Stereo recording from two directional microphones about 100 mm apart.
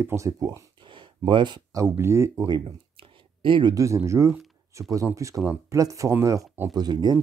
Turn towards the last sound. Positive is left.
turn(degrees=-45)  # may be behind; listen again after turning